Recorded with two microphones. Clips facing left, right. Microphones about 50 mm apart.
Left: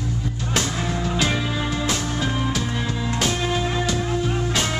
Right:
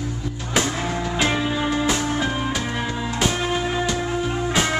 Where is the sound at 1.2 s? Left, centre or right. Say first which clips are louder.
Right 4 dB; centre.